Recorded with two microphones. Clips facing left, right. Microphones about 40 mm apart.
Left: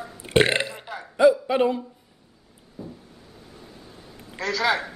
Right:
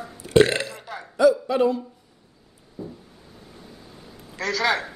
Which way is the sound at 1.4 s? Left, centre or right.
Left.